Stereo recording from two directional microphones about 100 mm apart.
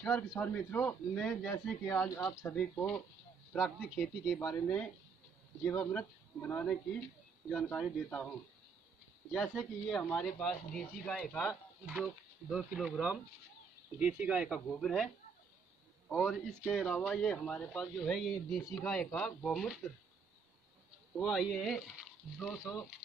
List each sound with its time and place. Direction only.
0.4 s speech: 15° left (ahead or behind)
3.5 s speech: centre (ahead or behind)
4.6 s speech: 15° left (ahead or behind)
7.4 s speech: 5° left (ahead or behind)
9.5 s speech: 10° left (ahead or behind); by 14.6 s 10° right (ahead or behind)
14.7 s speech: centre (ahead or behind)
16.3 s speech: 5° left (ahead or behind)
21.2 s speech: centre (ahead or behind)